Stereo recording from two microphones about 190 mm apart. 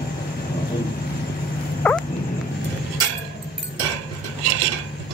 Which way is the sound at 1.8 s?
10° left (ahead or behind).